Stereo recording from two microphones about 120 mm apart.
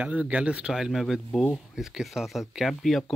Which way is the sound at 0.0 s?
10° right (ahead or behind).